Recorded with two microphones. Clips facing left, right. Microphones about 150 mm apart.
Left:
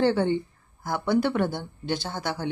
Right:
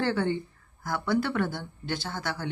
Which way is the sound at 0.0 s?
20° left (ahead or behind).